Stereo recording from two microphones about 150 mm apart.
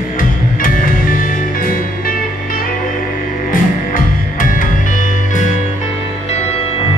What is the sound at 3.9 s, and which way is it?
Music, 65° left (ahead or behind).